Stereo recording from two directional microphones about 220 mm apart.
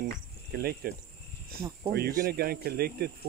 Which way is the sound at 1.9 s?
40° right (ahead or behind).